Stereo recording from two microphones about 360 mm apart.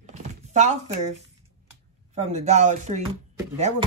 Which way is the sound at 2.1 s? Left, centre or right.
Centre.